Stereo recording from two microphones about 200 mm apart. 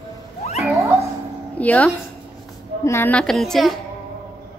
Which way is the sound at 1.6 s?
5° left (ahead or behind).